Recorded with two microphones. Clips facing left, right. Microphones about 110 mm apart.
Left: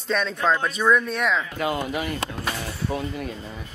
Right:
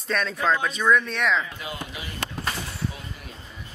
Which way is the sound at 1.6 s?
60° left (ahead or behind).